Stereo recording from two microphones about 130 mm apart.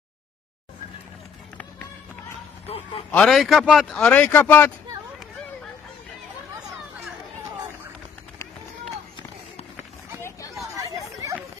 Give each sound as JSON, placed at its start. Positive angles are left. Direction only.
{"t": 3.1, "sound": "speech", "side_deg": 10}
{"t": 3.3, "sound": "speech", "side_deg": 0}
{"t": 4.0, "sound": "speech", "side_deg": 10}
{"t": 10.7, "sound": "chatter", "side_deg": -25}